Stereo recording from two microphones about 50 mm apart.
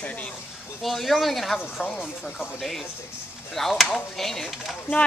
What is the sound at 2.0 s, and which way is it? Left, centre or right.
Speech, centre.